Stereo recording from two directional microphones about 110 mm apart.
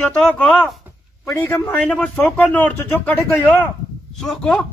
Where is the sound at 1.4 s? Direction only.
20° left (ahead or behind).